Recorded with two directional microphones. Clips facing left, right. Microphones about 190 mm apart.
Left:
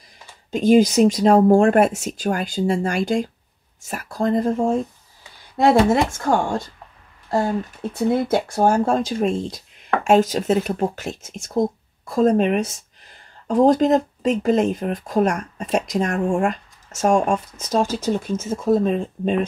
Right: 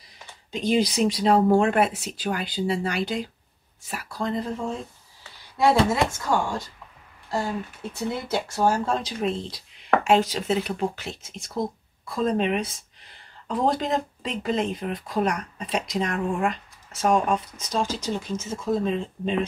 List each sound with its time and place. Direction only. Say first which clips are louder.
0.5 s speech: left 8 dB; 45° left (ahead or behind)
5.9 s speech: left 5 dB; 50° left (ahead or behind)